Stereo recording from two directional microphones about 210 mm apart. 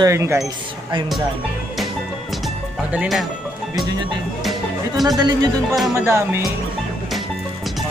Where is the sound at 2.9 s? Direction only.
5° right (ahead or behind).